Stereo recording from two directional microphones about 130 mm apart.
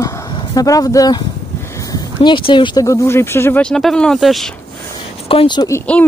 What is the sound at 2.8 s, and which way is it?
Speech, 20° left (ahead or behind).